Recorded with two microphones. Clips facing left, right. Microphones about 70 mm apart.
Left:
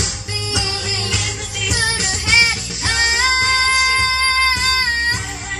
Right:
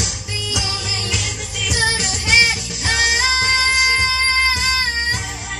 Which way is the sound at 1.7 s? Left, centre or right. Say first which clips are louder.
Right 1 dB; left.